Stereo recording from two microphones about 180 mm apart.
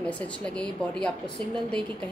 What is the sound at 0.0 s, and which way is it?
A woman's voice, 5° left (ahead or behind).